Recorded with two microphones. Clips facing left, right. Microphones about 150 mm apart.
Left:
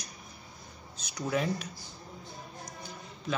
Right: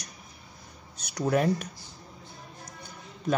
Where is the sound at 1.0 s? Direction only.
60° right (ahead or behind).